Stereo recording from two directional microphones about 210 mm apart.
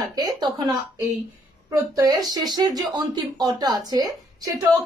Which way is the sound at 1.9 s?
20° right (ahead or behind).